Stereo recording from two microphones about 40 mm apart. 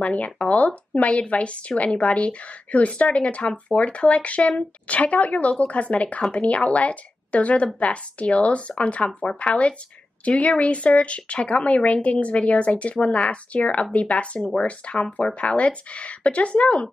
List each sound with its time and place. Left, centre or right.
0.0 s speech: left